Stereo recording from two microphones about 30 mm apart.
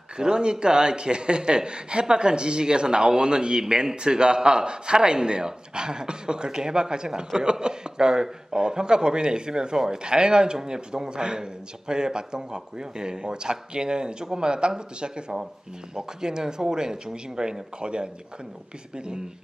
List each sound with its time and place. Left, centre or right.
0.2 s speech: right